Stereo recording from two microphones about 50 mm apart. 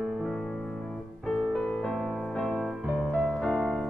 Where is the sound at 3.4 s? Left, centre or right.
Centre.